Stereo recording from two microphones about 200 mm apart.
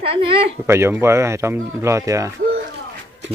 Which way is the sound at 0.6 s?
10° right (ahead or behind).